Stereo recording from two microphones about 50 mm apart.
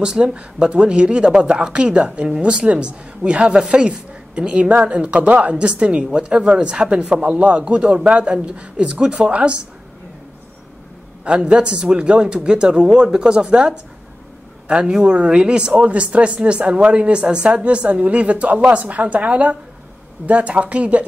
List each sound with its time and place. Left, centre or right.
0.0 s speech: centre
11.2 s speech: right